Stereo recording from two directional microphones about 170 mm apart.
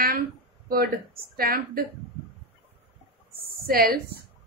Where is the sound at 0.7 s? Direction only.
60° right (ahead or behind).